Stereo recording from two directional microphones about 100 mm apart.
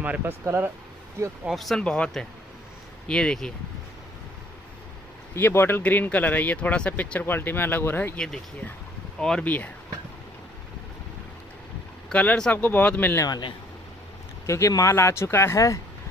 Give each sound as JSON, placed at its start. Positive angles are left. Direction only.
{"t": 0.0, "sound": "speech", "side_deg": -20}
{"t": 1.4, "sound": "speech", "side_deg": 0}
{"t": 5.3, "sound": "speech", "side_deg": 25}
{"t": 9.2, "sound": "speech", "side_deg": 10}
{"t": 12.1, "sound": "speech", "side_deg": 15}
{"t": 14.4, "sound": "speech", "side_deg": 30}